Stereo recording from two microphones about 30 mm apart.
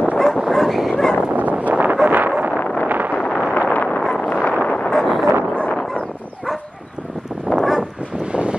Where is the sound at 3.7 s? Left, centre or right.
Left.